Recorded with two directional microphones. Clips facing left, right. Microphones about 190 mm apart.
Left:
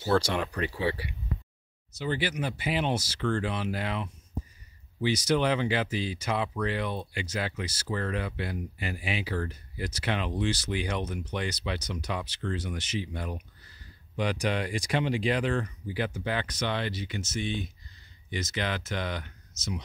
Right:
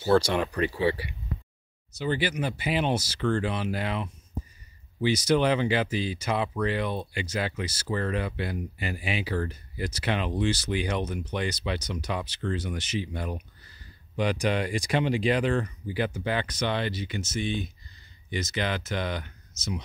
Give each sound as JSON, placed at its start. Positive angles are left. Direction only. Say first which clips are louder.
{"t": 2.0, "sound": "speech", "louder": "right 3 dB", "side_deg": -5}